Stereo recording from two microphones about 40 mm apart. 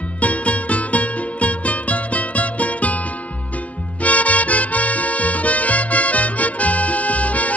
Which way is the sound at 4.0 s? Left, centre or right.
Left.